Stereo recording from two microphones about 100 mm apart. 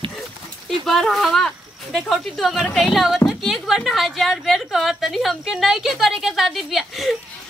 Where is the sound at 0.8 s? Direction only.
5° left (ahead or behind).